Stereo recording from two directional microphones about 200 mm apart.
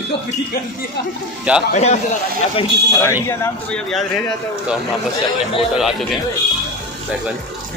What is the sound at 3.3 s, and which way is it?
Speech, 10° left (ahead or behind).